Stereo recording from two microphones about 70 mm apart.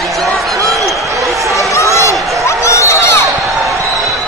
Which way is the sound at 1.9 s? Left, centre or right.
Left.